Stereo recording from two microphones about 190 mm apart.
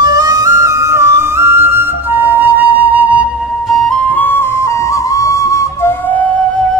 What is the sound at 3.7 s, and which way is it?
Flute, 5° left (ahead or behind).